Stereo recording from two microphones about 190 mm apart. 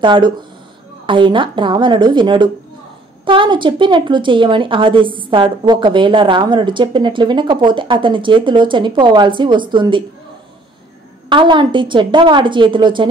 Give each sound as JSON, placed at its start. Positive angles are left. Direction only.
{"t": 0.0, "sound": "a woman's voice", "side_deg": -25}
{"t": 11.2, "sound": "a woman's voice", "side_deg": -25}